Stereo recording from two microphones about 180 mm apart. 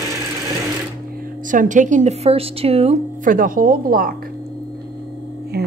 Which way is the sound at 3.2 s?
50° right (ahead or behind).